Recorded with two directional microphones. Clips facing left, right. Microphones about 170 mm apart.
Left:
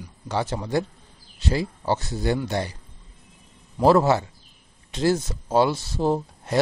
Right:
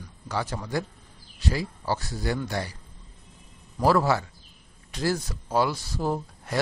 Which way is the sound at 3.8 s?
25° left (ahead or behind).